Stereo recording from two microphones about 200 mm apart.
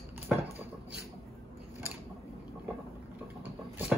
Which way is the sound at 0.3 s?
5° right (ahead or behind).